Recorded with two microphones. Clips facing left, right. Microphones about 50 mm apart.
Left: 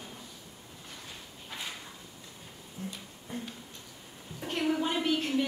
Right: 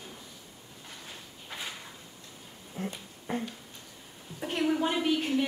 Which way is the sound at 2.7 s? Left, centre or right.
Right.